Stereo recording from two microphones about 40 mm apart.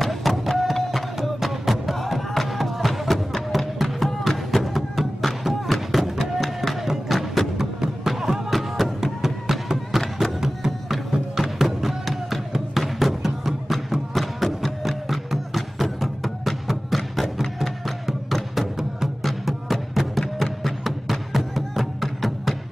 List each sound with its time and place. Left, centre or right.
0.0 s a sound: centre
0.7 s music: centre
4.7 s music: centre